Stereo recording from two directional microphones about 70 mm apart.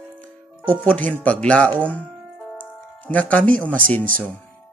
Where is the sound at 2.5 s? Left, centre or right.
Left.